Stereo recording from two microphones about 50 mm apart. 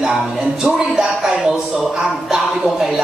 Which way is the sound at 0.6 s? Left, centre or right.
Centre.